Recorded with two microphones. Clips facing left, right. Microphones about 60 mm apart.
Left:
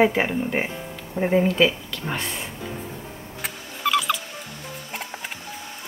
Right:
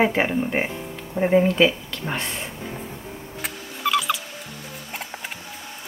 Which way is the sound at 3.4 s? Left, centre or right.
Centre.